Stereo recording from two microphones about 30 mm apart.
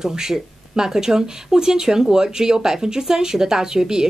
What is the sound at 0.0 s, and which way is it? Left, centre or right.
Speech, centre.